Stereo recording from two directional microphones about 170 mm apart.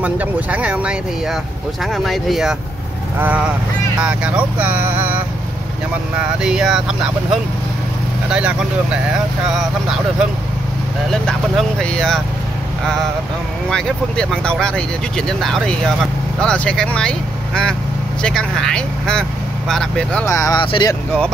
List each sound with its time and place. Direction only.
0.0 s speech: 10° right (ahead or behind)
8.3 s speech: 5° right (ahead or behind)
11.1 s speech: 5° left (ahead or behind)
13.7 s speech: 5° left (ahead or behind)
18.2 s speech: 5° left (ahead or behind)
20.2 s speech: 20° left (ahead or behind)